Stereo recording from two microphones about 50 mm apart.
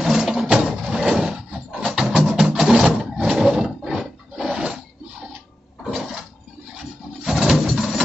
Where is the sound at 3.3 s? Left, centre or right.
Centre.